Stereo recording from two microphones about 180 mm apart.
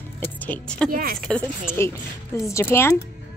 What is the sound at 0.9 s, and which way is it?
Speech, 55° right (ahead or behind).